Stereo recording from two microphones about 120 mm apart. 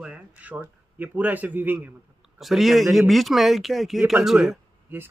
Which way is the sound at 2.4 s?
Centre (ahead or behind).